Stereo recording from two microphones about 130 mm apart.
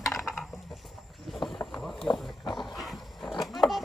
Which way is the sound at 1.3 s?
Centre (ahead or behind).